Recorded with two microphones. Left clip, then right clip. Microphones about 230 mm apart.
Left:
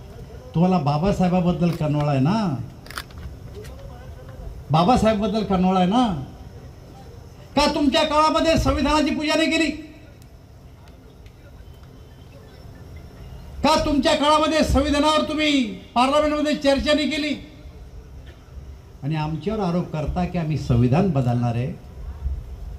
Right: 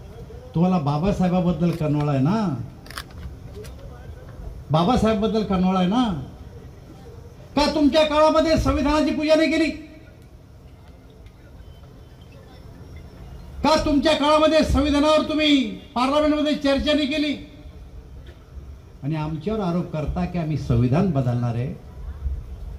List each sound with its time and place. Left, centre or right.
0.5 s a man's voice: left
4.6 s a man's voice: left
7.5 s a man's voice: left
13.6 s a man's voice: left
19.0 s a man's voice: left